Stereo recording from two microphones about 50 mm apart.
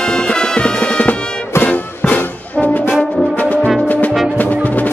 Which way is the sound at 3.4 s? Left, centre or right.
Left.